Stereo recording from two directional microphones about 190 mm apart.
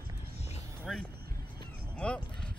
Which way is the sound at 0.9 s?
Centre (ahead or behind).